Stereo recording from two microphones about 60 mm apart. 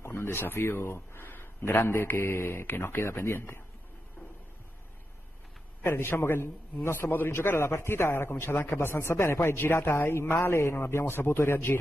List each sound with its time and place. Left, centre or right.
0.0 s a man's voice: left
5.9 s a man's voice: left